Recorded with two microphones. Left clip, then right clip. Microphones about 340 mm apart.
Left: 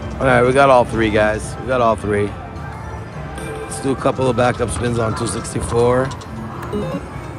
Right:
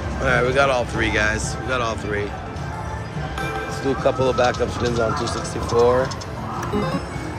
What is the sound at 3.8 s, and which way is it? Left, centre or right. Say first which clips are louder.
Speech: left 2 dB; centre.